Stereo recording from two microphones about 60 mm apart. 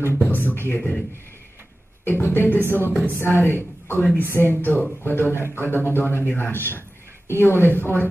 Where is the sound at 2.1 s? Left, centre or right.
Left.